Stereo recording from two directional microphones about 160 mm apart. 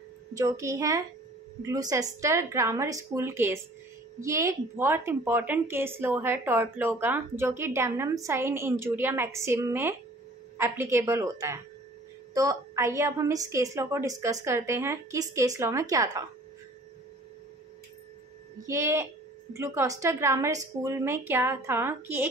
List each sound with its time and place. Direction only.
0.4 s a woman's voice: 20° right (ahead or behind)
18.7 s a woman's voice: 20° right (ahead or behind)